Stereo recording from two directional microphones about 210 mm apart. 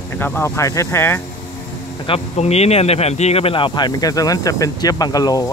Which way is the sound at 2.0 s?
30° left (ahead or behind).